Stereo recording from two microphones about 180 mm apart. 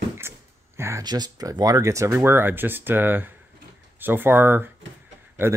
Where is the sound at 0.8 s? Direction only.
15° right (ahead or behind).